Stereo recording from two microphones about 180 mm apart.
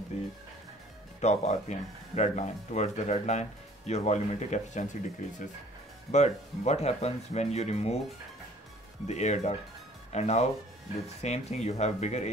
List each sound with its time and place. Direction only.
0.1 s speech: 40° left (ahead or behind)
6.1 s speech: 40° left (ahead or behind)
9.0 s speech: 40° left (ahead or behind)